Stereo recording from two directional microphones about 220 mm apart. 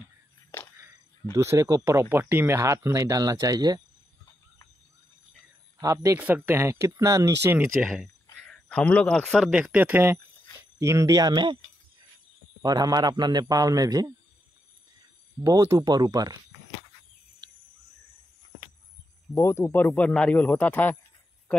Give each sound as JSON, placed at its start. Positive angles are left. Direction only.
{"t": 1.3, "sound": "speech", "side_deg": -15}
{"t": 5.8, "sound": "speech", "side_deg": -15}
{"t": 12.6, "sound": "speech", "side_deg": -15}
{"t": 15.4, "sound": "speech", "side_deg": -15}
{"t": 19.3, "sound": "a man's voice", "side_deg": 10}